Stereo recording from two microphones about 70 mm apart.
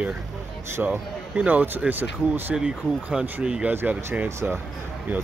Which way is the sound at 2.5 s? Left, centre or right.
Centre.